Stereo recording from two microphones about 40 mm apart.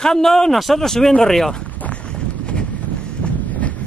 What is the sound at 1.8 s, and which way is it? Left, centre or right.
Wind noise, left.